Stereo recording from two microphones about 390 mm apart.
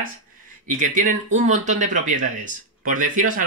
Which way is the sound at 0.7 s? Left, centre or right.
Centre.